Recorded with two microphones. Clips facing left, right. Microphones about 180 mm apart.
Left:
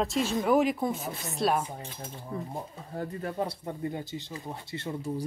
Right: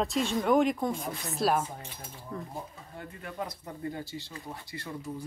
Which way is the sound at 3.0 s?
40° left (ahead or behind).